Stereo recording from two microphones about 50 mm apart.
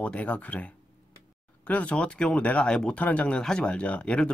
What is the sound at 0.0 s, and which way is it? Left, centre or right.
Speech, left.